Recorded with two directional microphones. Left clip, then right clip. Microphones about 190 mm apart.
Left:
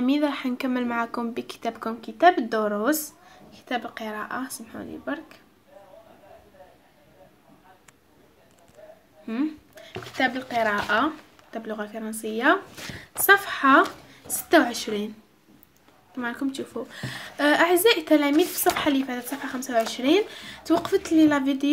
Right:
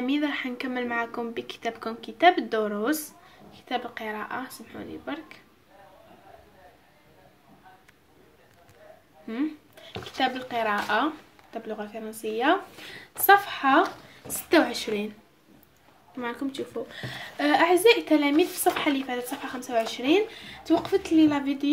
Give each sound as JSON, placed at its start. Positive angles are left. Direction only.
{"t": 0.0, "sound": "a woman's voice", "side_deg": 25}
{"t": 9.2, "sound": "a woman's voice", "side_deg": 15}
{"t": 16.2, "sound": "a woman's voice", "side_deg": 20}